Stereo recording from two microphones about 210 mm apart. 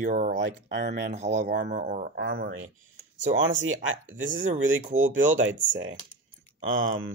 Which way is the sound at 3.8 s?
70° right (ahead or behind).